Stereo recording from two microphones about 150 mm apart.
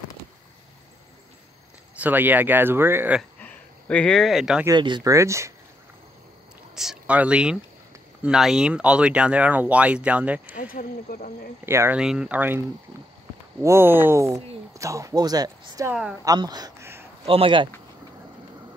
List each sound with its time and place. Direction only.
2.0 s speech: 10° right (ahead or behind)
3.4 s speech: 10° left (ahead or behind)
4.6 s speech: 30° right (ahead or behind)
6.7 s speech: 5° right (ahead or behind)
10.4 s speech: 70° left (ahead or behind)
11.6 s speech: 15° right (ahead or behind)
12.0 s speech: 5° right (ahead or behind); by 15.9 s 25° right (ahead or behind)
15.9 s speech: 5° right (ahead or behind)
16.3 s speech: 25° right (ahead or behind)
17.3 s speech: 35° right (ahead or behind)